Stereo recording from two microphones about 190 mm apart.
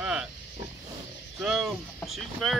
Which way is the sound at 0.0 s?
5° right (ahead or behind).